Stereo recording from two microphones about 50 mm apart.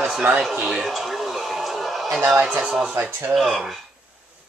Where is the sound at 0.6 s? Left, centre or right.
Centre.